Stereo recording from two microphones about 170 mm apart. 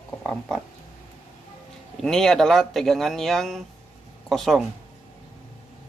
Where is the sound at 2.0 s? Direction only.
Centre (ahead or behind).